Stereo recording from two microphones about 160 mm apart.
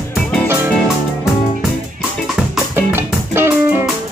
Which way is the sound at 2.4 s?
15° right (ahead or behind).